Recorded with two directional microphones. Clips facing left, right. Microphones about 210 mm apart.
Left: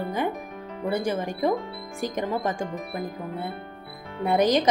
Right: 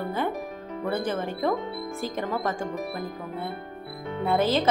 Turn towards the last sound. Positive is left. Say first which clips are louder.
# left 2 dB
turn(degrees=15)  # may be behind; listen again after turning